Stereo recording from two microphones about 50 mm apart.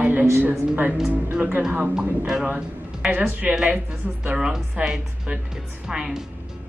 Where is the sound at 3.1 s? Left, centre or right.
Right.